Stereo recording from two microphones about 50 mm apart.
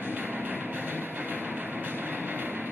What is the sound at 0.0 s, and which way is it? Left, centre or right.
Train, right.